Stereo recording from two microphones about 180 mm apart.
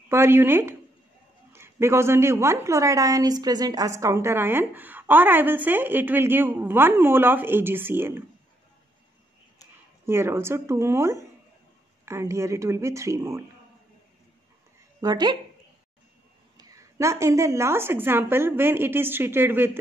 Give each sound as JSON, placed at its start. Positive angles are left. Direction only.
{"t": 0.1, "sound": "a woman's voice", "side_deg": -15}
{"t": 10.0, "sound": "a woman's voice", "side_deg": -15}
{"t": 15.0, "sound": "speech", "side_deg": -25}
{"t": 16.5, "sound": "a woman's voice", "side_deg": -20}